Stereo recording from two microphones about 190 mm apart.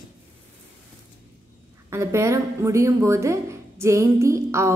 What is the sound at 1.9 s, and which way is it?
Speech, 15° right (ahead or behind).